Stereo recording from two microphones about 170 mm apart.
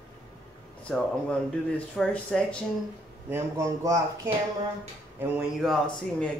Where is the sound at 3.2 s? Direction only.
15° right (ahead or behind).